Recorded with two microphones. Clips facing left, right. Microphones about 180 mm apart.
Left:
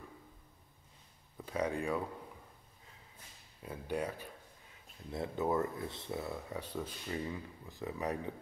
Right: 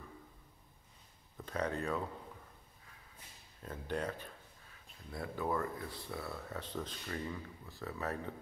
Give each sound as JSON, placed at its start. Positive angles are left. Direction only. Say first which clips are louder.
{"t": 1.4, "sound": "speech", "louder": "left 2 dB", "side_deg": 10}
{"t": 3.6, "sound": "a sound", "louder": "left 1 dB", "side_deg": 10}
{"t": 5.1, "sound": "speech", "louder": "left 3 dB", "side_deg": 25}